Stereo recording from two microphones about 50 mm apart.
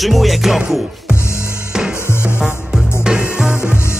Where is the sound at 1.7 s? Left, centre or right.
Centre.